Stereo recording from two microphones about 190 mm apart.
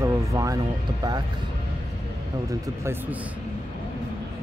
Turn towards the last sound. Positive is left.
turn(degrees=-10)  # may be behind; listen again after turning